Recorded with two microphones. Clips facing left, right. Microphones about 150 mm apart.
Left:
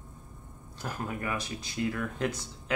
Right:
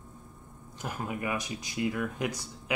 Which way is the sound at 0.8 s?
15° right (ahead or behind).